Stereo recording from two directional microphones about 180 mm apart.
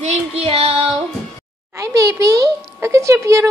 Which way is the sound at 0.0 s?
35° right (ahead or behind).